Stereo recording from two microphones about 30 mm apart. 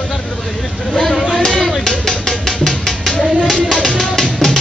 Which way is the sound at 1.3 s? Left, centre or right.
Centre.